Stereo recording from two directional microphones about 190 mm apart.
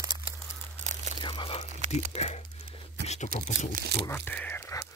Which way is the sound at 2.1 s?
35° left (ahead or behind).